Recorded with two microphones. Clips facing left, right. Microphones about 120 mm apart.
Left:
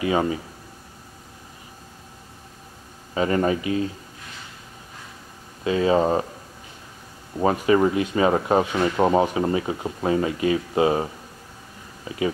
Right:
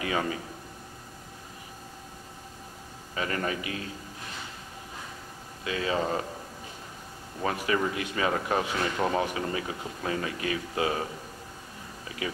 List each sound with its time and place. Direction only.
0.0 s speech: 25° left (ahead or behind)
3.2 s speech: 30° left (ahead or behind)
5.6 s speech: 30° left (ahead or behind)
7.3 s speech: 30° left (ahead or behind)